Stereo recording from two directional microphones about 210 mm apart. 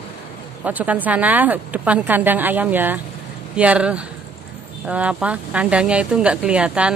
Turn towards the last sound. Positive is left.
turn(degrees=-5)  # may be behind; listen again after turning